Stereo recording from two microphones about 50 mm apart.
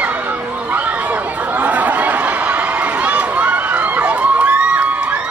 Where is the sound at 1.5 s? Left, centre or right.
Right.